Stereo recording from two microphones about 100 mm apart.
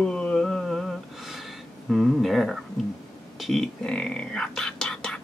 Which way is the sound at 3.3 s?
Centre (ahead or behind).